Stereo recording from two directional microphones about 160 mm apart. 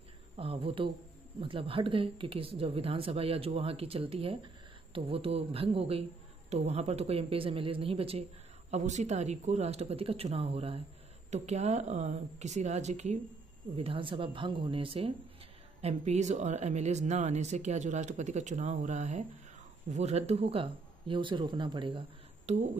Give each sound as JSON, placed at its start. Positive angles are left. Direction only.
{"t": 0.4, "sound": "speech", "side_deg": -35}
{"t": 13.7, "sound": "speech", "side_deg": -35}
{"t": 22.5, "sound": "speech", "side_deg": -45}